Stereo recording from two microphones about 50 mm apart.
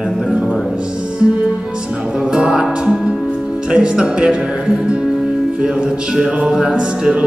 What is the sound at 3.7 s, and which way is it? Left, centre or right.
Speech, centre.